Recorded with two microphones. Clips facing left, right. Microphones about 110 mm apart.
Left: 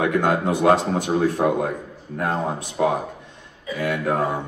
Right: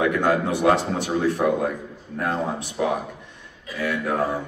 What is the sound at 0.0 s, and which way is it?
A man's voice, 25° left (ahead or behind).